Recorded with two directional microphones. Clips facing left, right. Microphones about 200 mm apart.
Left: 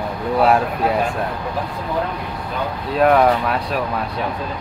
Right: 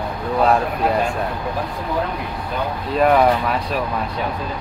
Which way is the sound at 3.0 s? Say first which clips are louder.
Left 1 dB; centre (ahead or behind).